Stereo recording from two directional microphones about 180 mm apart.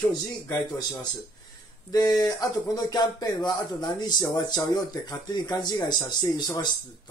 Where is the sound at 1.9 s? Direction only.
20° left (ahead or behind).